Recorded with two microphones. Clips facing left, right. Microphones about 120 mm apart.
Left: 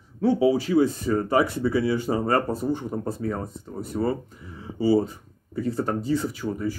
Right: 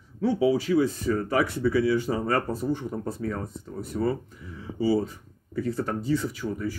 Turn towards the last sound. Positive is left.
turn(degrees=40)  # may be behind; listen again after turning